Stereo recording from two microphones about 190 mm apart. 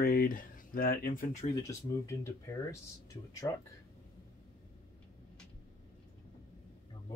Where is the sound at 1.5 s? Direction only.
15° left (ahead or behind).